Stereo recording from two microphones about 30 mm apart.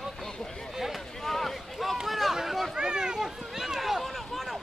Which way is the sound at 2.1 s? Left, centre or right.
Centre.